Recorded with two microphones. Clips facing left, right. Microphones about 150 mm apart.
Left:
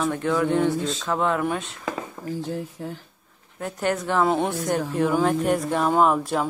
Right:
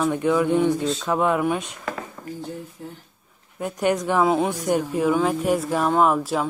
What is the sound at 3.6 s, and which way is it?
Speech, 15° right (ahead or behind).